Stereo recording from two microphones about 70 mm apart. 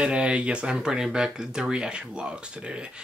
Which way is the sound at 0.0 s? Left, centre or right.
Centre.